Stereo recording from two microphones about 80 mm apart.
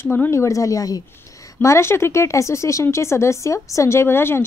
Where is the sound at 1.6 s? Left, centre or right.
Left.